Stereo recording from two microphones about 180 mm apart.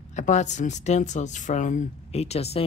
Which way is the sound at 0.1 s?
40° left (ahead or behind).